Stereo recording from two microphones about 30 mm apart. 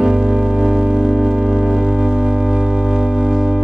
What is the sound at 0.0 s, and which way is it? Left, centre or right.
Music, right.